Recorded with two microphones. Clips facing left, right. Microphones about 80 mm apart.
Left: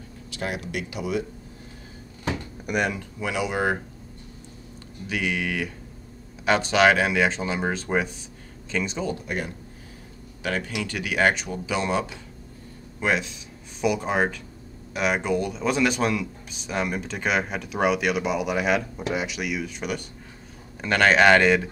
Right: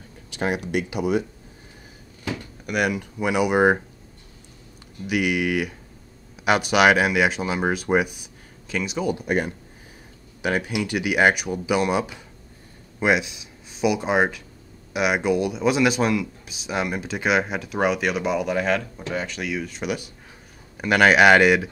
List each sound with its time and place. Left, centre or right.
0.4 s speech: right
2.8 s speech: centre
5.0 s speech: centre
10.4 s speech: centre